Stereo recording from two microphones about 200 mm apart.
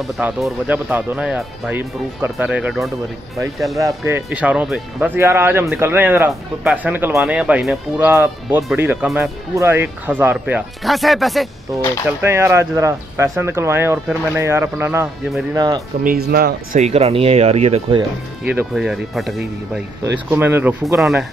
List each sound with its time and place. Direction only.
0.0 s speech: 5° right (ahead or behind)
3.8 s speech: 10° right (ahead or behind)
12.2 s speech: 15° right (ahead or behind)
16.0 s speech: 45° right (ahead or behind)
16.8 s speech: 30° right (ahead or behind)
18.5 s speech: 5° right (ahead or behind)